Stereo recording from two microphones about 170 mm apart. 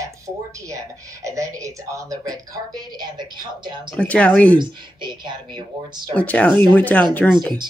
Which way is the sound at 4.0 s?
10° left (ahead or behind).